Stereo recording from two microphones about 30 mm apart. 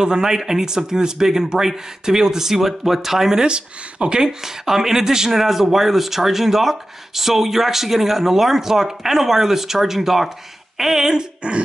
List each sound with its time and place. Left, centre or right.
0.0 s speech: right
3.4 s speech: right
4.2 s speech: centre
11.4 s speech: right